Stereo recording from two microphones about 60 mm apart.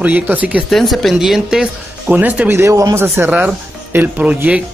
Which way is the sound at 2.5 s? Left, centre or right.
Right.